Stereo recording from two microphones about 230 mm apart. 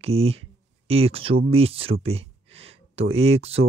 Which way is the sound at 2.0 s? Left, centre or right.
Right.